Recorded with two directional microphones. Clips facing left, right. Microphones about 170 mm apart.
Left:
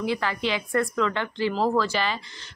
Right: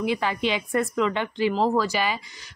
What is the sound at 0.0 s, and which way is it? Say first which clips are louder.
A woman's voice: right 2 dB; 15° right (ahead or behind).